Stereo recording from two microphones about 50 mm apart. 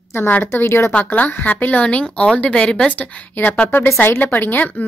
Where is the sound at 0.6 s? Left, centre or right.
Left.